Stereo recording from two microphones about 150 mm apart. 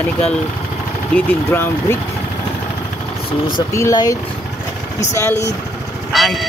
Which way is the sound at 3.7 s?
20° left (ahead or behind).